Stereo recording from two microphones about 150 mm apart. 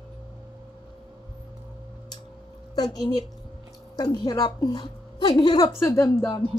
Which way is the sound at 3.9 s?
25° left (ahead or behind).